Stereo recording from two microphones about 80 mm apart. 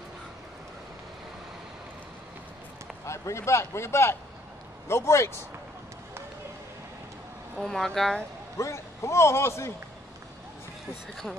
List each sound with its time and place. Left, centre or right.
3.1 s a man's voice: left
7.6 s speech: centre
8.5 s a man's voice: left